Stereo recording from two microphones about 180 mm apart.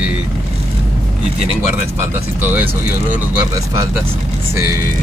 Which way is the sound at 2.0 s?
10° right (ahead or behind).